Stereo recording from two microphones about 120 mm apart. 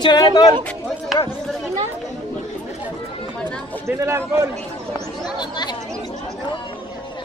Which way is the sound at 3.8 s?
25° right (ahead or behind).